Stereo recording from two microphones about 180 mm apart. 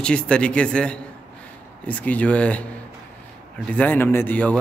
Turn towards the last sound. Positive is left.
turn(degrees=10)  # may be behind; listen again after turning